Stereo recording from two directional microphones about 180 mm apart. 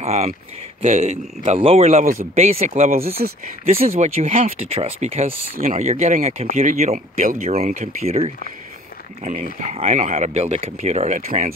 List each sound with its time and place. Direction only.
0.0 s speech: 35° right (ahead or behind)
7.5 s speech: 50° right (ahead or behind)